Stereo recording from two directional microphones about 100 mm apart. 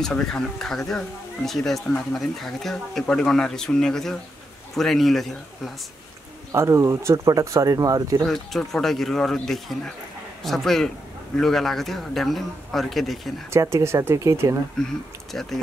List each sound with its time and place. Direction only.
0.0 s speech: 5° left (ahead or behind)
6.5 s speech: 30° right (ahead or behind)
8.3 s speech: 5° left (ahead or behind)
13.5 s speech: 30° right (ahead or behind)
14.8 s speech: 5° left (ahead or behind)